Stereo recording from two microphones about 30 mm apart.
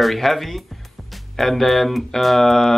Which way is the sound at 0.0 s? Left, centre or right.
Centre.